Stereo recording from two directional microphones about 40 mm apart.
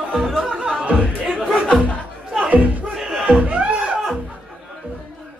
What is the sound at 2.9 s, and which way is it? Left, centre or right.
Crowd, centre.